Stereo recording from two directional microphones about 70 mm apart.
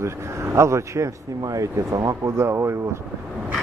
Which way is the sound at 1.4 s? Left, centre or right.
Right.